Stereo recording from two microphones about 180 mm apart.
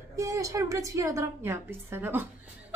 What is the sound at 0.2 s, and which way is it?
A woman's voice, 15° right (ahead or behind).